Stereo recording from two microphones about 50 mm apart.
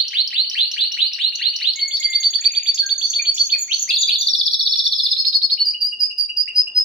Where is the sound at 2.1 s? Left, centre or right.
Centre.